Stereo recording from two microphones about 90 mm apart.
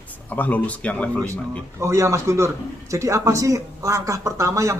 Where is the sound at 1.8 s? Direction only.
30° right (ahead or behind).